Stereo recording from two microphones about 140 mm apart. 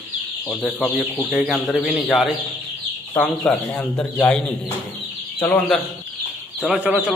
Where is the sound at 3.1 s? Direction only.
15° left (ahead or behind).